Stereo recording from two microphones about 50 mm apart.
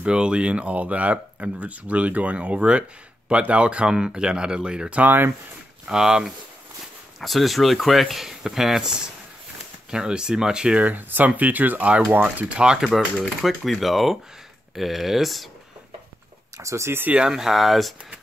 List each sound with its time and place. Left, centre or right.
0.0 s speech: centre
5.0 s speech: right
5.9 s speech: centre
10.9 s speech: right
12.5 s speech: centre
12.9 s speech: centre
16.5 s speech: right
17.3 s speech: centre